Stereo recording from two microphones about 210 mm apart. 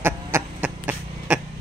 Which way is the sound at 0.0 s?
10° right (ahead or behind).